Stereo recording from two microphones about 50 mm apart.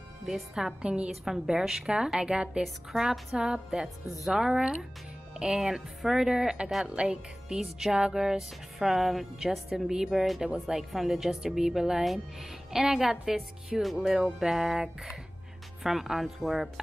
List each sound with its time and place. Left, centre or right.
0.2 s a woman's voice: centre
1.2 s a woman's voice: centre
10.4 s a woman's voice: centre